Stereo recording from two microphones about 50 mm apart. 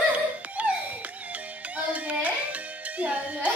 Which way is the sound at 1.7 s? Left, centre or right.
Right.